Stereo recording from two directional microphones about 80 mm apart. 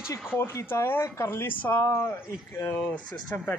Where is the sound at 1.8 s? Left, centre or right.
Left.